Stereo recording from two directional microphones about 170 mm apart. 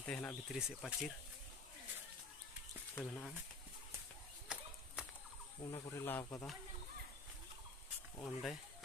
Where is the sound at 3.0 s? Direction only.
5° left (ahead or behind).